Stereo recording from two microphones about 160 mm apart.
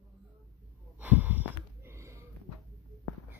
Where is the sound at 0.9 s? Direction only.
10° right (ahead or behind).